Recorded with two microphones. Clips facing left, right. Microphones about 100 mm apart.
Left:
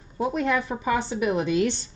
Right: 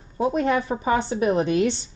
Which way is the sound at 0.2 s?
25° right (ahead or behind).